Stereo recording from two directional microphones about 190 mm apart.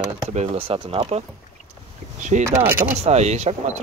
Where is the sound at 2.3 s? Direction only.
40° right (ahead or behind).